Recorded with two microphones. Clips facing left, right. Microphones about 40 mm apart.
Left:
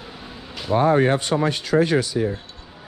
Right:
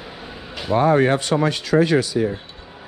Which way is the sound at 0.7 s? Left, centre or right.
Right.